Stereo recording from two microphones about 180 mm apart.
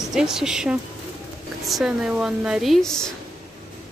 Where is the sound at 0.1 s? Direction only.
5° right (ahead or behind).